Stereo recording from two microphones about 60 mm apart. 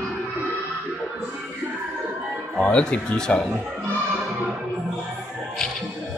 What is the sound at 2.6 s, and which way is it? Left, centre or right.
Speech, centre.